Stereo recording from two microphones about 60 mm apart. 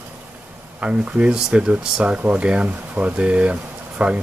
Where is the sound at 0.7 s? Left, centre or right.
Centre.